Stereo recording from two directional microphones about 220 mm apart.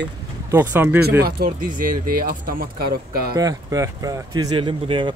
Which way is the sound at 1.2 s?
45° right (ahead or behind).